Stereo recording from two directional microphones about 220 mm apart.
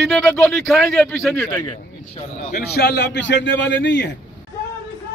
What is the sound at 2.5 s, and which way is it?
A man's voice, 45° left (ahead or behind).